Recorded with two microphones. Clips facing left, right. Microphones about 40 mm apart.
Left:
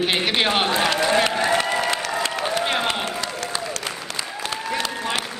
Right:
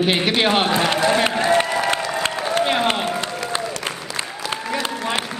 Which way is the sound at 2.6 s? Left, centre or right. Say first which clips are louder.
Right 6 dB; centre.